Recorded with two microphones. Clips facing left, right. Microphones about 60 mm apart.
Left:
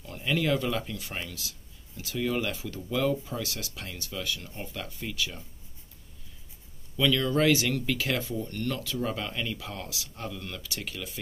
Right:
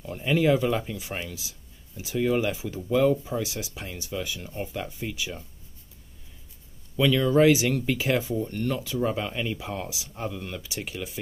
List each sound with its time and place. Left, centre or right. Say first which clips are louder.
0.0 s speech: right 5 dB; centre
7.0 s speech: right 5 dB; centre